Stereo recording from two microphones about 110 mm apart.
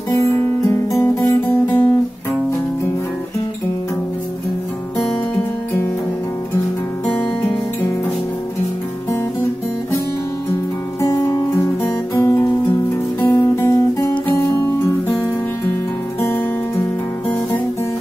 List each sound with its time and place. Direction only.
0.1 s music: 30° left (ahead or behind)
7.1 s music: 10° left (ahead or behind)
11.0 s music: 30° left (ahead or behind)
12.2 s guitar: 25° left (ahead or behind)